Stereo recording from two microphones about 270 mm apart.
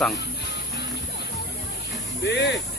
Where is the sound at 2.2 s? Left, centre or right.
Left.